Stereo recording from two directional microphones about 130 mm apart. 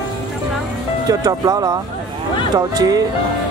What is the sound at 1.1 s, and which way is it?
Speech, 30° right (ahead or behind).